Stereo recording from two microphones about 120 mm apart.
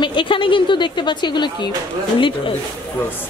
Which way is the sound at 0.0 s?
45° left (ahead or behind).